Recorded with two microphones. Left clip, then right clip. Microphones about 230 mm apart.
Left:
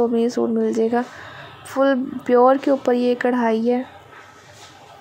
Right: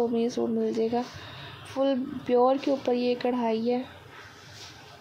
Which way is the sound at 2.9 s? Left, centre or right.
Left.